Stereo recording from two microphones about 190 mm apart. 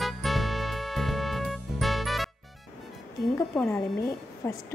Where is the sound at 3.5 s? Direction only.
Centre (ahead or behind).